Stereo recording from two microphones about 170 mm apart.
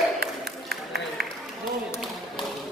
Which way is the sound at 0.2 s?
70° right (ahead or behind).